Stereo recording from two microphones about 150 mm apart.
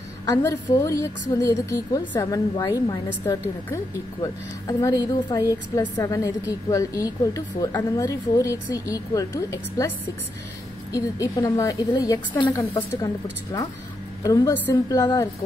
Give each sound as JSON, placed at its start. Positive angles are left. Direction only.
{"t": 0.3, "sound": "a woman's voice", "side_deg": 20}
{"t": 4.2, "sound": "a woman's voice", "side_deg": 25}
{"t": 10.9, "sound": "a woman's voice", "side_deg": 20}
{"t": 14.2, "sound": "a woman's voice", "side_deg": 20}